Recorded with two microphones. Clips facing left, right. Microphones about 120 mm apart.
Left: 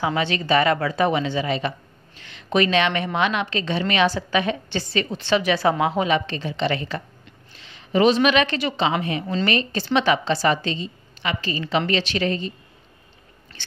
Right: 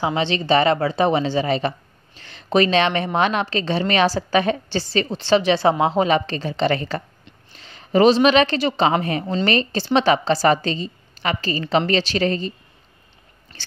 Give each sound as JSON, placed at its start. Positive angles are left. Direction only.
{"t": 0.0, "sound": "a woman's voice", "side_deg": -25}
{"t": 9.2, "sound": "a woman's voice", "side_deg": -25}
{"t": 13.6, "sound": "a sound", "side_deg": -35}